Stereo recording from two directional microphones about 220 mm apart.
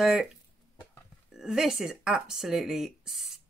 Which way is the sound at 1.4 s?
Centre (ahead or behind).